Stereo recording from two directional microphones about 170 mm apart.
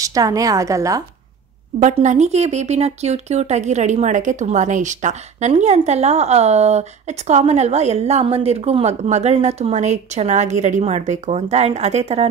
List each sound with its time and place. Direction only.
0.0 s a woman's voice: 20° right (ahead or behind)
1.8 s speech: 45° right (ahead or behind)